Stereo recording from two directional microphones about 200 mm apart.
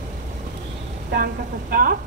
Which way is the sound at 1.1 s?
50° right (ahead or behind).